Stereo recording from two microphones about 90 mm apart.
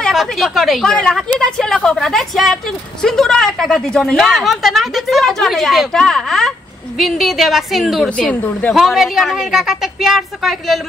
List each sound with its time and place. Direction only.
0.0 s a woman's voice: centre (ahead or behind)
8.1 s speech: 15° left (ahead or behind)
8.7 s a woman's voice: centre (ahead or behind)